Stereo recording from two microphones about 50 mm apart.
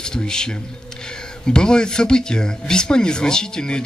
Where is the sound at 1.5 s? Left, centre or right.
Centre.